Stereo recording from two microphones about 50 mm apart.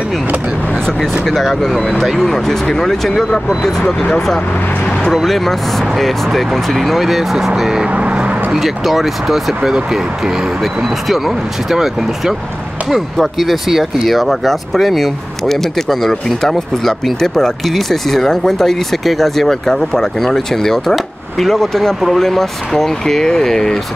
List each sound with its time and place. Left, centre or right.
1.2 s speech: centre
5.1 s speech: centre
7.9 s speech: right
8.5 s speech: centre